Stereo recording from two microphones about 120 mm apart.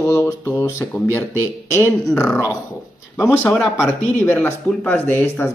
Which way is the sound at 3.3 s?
20° left (ahead or behind).